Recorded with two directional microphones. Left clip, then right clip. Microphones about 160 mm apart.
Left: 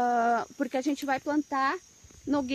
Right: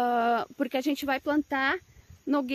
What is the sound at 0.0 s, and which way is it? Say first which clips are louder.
Speech: even; 25° right (ahead or behind).